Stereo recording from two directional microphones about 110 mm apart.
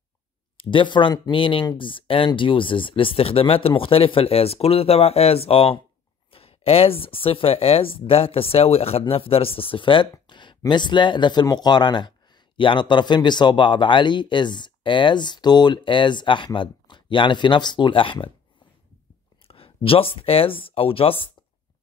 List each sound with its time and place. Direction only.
0.6 s a man's voice: 50° left (ahead or behind)
1.3 s a man's voice: 50° left (ahead or behind)
19.4 s speech: 60° left (ahead or behind)